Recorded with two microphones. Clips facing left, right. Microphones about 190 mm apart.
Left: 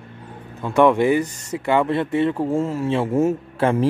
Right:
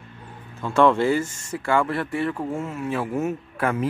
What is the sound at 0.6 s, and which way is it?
Speech, 15° left (ahead or behind).